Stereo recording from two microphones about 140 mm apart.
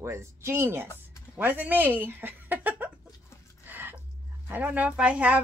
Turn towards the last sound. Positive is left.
turn(degrees=-10)  # may be behind; listen again after turning